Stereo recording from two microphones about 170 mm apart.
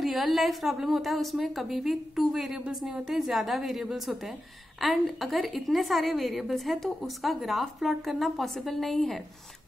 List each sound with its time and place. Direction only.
0.0 s a woman's voice: centre (ahead or behind)